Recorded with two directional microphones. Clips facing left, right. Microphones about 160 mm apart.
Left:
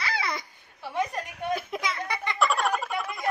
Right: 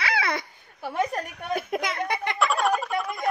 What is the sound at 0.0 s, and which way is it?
Babbling, 65° right (ahead or behind).